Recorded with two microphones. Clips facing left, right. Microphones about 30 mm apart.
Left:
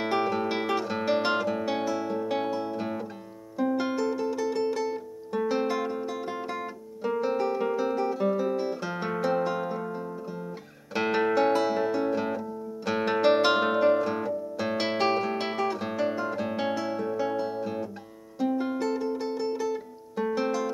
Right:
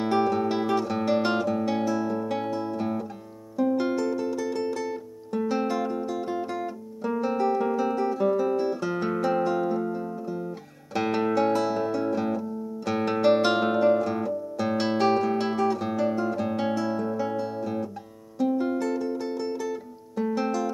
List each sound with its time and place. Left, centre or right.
0.0 s guitar: centre
3.5 s music: centre